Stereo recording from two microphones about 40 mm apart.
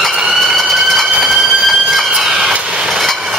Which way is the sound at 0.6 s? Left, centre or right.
Centre.